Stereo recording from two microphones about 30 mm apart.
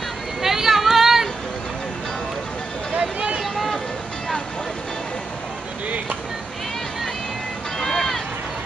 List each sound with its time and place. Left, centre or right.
0.4 s a sound: centre
3.0 s vehicle: right
3.5 s vehicle: centre
7.8 s run: centre